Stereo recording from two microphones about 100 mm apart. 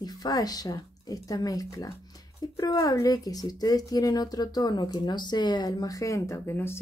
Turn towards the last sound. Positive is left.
turn(degrees=25)  # may be behind; listen again after turning